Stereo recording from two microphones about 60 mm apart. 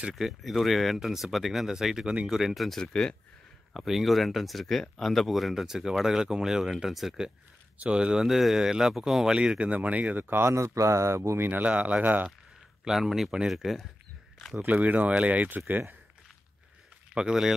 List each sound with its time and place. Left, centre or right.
0.1 s speech: centre
2.8 s speech: centre
3.7 s speech: centre
7.8 s speech: centre
10.3 s speech: right
11.4 s speech: right
12.8 s speech: centre
14.7 s speech: right
17.1 s speech: centre